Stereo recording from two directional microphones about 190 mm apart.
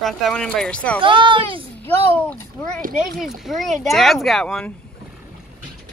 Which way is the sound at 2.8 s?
45° right (ahead or behind).